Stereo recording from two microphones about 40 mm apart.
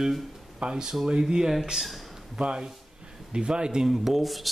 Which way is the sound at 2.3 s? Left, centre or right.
Right.